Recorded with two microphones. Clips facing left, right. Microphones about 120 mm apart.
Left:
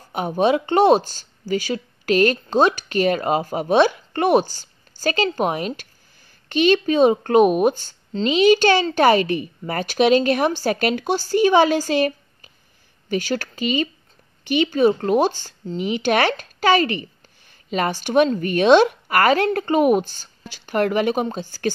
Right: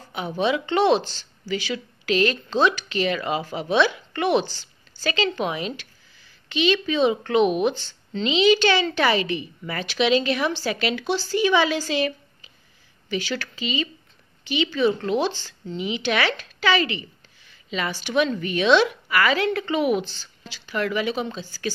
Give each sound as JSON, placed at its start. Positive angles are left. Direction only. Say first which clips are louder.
{"t": 0.1, "sound": "speech", "louder": "left 5 dB", "side_deg": 45}